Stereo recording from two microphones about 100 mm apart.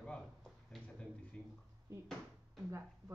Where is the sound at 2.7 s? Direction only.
25° right (ahead or behind).